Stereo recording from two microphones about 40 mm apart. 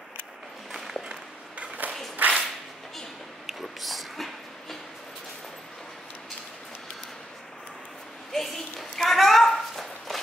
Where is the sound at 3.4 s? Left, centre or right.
Centre.